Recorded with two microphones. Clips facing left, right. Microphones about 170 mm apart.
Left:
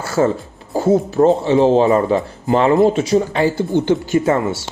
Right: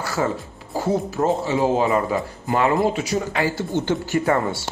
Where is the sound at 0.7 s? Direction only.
25° left (ahead or behind).